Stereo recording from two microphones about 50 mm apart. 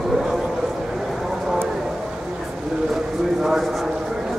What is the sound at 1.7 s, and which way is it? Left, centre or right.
Clip-clop, centre.